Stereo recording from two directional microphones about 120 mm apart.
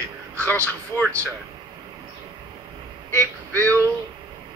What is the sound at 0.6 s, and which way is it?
Speech, 15° left (ahead or behind).